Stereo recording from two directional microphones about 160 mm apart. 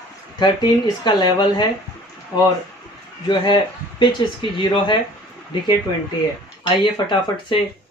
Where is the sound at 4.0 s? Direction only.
30° left (ahead or behind).